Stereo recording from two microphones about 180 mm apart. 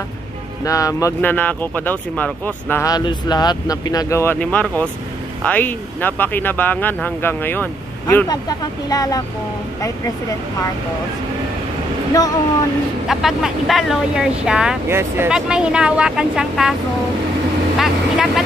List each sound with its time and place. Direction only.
0.7 s speech: 20° left (ahead or behind)
8.3 s speech: 20° left (ahead or behind)
13.1 s speech: centre (ahead or behind)
17.7 s vehicle: centre (ahead or behind)